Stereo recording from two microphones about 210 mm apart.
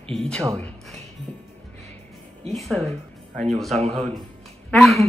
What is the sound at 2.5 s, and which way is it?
Speech, centre (ahead or behind).